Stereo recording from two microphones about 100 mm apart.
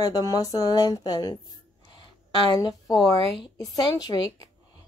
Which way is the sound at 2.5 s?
40° left (ahead or behind).